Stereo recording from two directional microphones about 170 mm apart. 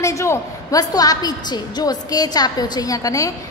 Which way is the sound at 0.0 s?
15° left (ahead or behind).